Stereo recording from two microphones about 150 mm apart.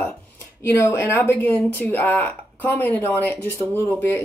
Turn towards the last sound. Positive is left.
turn(degrees=15)  # may be behind; listen again after turning